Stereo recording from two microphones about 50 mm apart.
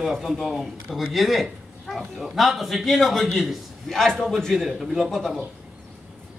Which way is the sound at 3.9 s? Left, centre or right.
Centre.